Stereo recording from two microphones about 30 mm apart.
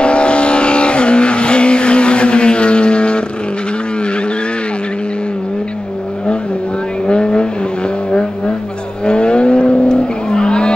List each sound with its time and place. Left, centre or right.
0.0 s vehicle: left
7.1 s vehicle: left